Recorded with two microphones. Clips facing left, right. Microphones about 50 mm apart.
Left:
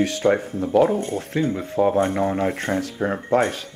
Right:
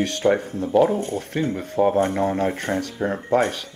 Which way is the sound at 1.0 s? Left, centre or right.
Left.